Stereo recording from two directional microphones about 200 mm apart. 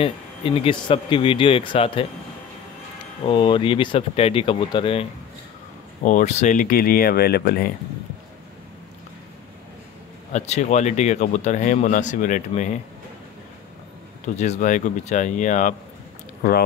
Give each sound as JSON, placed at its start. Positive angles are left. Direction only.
{"t": 0.0, "sound": "speech", "side_deg": 25}
{"t": 3.3, "sound": "speech", "side_deg": 25}
{"t": 6.0, "sound": "speech", "side_deg": 35}
{"t": 10.3, "sound": "speech", "side_deg": 35}
{"t": 14.2, "sound": "speech", "side_deg": 35}